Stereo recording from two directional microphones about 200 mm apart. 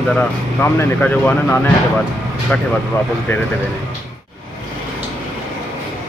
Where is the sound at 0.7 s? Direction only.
10° left (ahead or behind).